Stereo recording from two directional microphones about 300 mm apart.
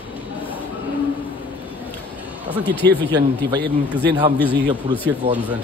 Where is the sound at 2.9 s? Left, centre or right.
Right.